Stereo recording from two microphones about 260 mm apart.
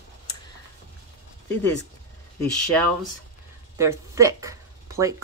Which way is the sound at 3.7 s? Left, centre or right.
Centre.